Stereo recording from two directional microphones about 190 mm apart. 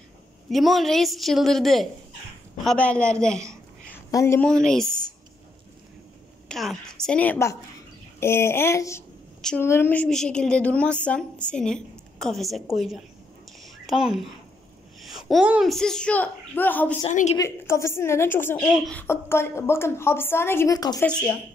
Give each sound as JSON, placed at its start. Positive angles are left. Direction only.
{"t": 0.5, "sound": "a woman's voice", "side_deg": 0}
{"t": 4.1, "sound": "a woman's voice", "side_deg": 15}
{"t": 4.5, "sound": "a woman's voice", "side_deg": 5}
{"t": 6.5, "sound": "a woman's voice", "side_deg": 0}
{"t": 13.6, "sound": "a sound", "side_deg": 0}
{"t": 15.0, "sound": "a child's voice", "side_deg": 0}
{"t": 17.1, "sound": "a woman's voice", "side_deg": 40}
{"t": 17.4, "sound": "a woman's voice", "side_deg": 15}